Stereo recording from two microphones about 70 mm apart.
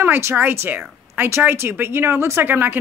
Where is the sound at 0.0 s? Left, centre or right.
Right.